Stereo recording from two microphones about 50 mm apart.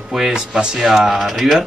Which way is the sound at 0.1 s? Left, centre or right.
Centre.